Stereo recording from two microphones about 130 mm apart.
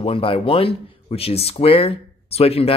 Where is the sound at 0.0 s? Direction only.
45° left (ahead or behind).